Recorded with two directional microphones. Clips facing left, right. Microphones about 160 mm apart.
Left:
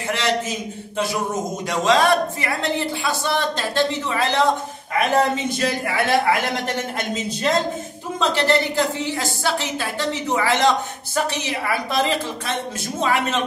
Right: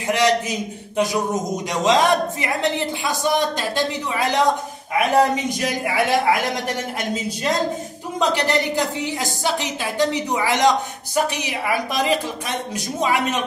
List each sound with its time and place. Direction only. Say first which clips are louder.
0.1 s a man's voice: right 4 dB; 15° right (ahead or behind)